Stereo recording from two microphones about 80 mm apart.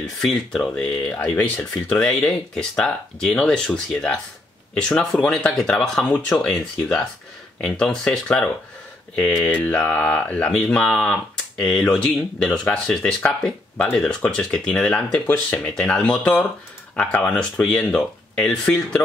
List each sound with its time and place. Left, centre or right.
0.0 s speech: centre
1.3 s speech: centre
6.0 s speech: centre